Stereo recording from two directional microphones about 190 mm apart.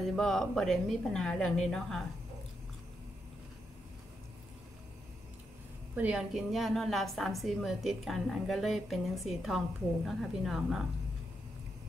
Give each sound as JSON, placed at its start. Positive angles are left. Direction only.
{"t": 0.0, "sound": "a woman's voice", "side_deg": 0}
{"t": 5.9, "sound": "a woman's voice", "side_deg": -5}